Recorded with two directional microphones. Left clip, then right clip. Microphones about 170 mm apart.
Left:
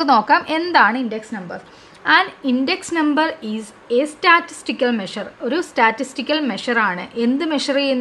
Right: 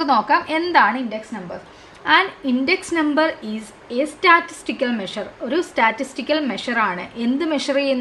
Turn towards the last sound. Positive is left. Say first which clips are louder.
# left 1 dB
turn(degrees=40)  # may be behind; listen again after turning